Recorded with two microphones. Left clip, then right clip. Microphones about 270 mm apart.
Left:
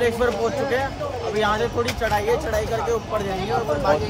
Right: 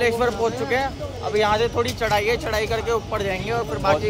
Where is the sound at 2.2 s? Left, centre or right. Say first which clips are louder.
Even; centre.